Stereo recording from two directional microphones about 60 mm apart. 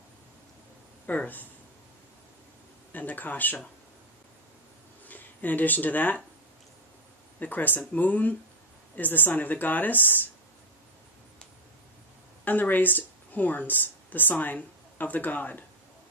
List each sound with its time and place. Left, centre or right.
1.0 s speech: left
2.9 s speech: left
5.0 s speech: left
7.3 s a woman's voice: left
12.4 s speech: left